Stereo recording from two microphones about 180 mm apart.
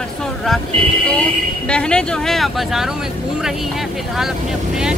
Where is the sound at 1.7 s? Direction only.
5° left (ahead or behind).